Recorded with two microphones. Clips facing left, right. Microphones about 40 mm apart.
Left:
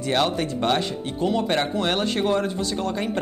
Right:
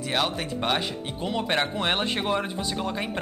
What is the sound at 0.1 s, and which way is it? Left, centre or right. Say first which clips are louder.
Speech: left 5 dB; centre.